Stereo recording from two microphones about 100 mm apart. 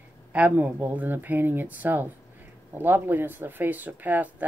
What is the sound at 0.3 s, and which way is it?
Speech, 15° right (ahead or behind).